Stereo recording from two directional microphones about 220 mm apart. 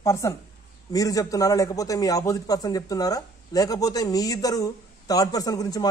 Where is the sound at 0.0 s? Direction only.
15° left (ahead or behind).